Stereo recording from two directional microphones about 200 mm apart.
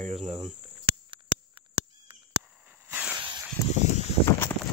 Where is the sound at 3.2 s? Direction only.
20° right (ahead or behind).